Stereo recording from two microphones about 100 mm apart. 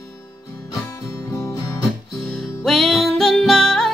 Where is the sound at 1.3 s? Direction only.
35° left (ahead or behind).